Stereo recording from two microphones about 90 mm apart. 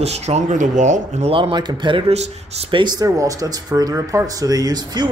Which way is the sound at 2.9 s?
40° right (ahead or behind).